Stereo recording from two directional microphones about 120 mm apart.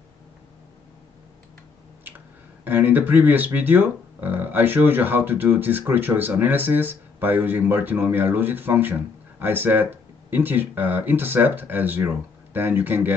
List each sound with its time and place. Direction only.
2.6 s speech: 15° right (ahead or behind)